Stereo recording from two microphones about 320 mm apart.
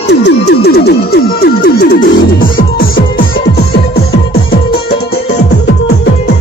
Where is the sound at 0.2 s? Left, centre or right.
Left.